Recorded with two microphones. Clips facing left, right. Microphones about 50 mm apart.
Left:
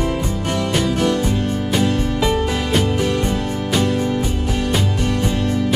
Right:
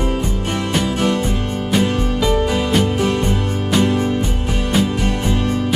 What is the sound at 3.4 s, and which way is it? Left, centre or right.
Music, right.